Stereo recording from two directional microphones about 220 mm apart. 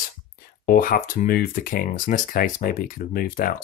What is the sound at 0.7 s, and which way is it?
Speech, 40° left (ahead or behind).